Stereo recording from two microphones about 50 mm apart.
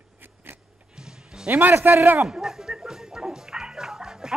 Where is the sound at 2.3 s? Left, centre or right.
Centre.